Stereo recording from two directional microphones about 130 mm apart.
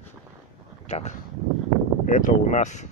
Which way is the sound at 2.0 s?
75° left (ahead or behind).